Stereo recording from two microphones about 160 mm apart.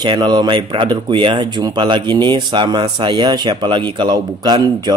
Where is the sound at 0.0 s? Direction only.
25° right (ahead or behind).